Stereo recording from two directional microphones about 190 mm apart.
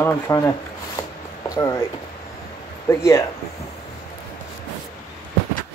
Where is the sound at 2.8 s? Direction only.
15° left (ahead or behind).